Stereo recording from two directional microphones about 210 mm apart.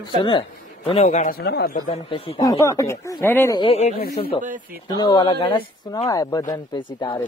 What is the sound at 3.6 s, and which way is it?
Speech, 30° left (ahead or behind).